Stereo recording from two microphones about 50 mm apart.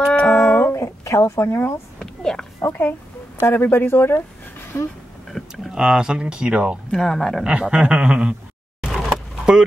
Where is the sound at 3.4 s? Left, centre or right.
Left.